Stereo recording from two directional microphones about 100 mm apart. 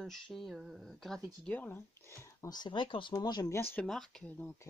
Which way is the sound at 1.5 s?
20° left (ahead or behind).